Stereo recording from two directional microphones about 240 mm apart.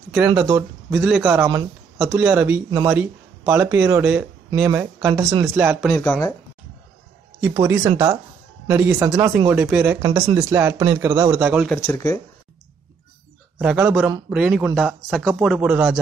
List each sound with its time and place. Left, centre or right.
0.1 s speech: centre
5.9 s speech: centre
7.3 s speech: centre
11.8 s speech: centre
13.6 s speech: centre